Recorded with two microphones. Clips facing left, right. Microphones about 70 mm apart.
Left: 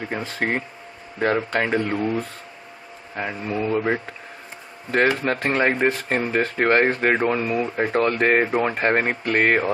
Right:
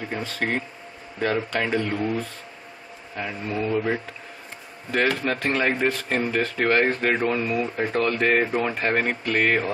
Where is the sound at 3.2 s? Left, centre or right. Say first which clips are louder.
Left 2 dB; centre.